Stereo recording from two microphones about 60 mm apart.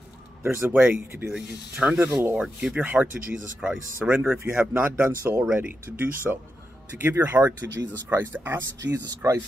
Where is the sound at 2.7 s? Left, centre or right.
Right.